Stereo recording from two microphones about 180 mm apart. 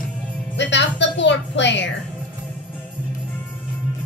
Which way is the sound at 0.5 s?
80° left.